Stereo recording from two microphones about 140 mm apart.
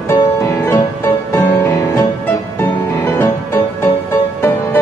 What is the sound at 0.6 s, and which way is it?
Music, 15° left (ahead or behind).